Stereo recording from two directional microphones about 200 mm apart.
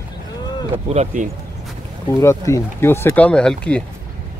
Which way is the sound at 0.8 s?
35° right (ahead or behind).